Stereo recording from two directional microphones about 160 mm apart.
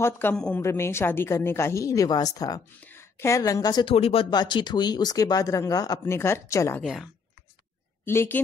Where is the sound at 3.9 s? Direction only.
35° left (ahead or behind); by 6.8 s 15° left (ahead or behind).